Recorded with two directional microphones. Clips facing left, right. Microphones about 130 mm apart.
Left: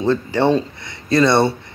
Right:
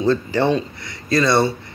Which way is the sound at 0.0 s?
20° left (ahead or behind).